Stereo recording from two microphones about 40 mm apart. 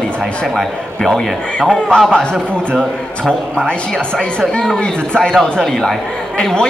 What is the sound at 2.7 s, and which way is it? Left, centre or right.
Speech, centre.